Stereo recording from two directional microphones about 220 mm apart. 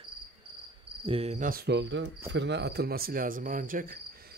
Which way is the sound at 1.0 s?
25° right (ahead or behind).